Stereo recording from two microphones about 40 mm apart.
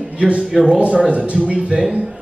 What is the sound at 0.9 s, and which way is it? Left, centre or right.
Speech, right.